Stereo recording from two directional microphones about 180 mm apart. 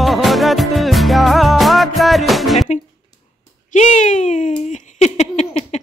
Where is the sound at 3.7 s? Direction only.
40° left (ahead or behind).